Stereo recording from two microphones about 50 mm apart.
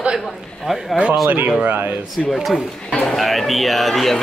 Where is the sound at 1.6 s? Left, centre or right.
Right.